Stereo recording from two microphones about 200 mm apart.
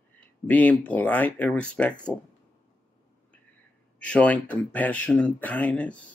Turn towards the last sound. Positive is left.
turn(degrees=5)  # may be behind; listen again after turning